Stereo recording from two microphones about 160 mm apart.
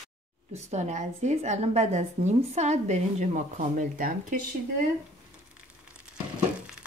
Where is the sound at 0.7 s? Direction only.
45° right (ahead or behind).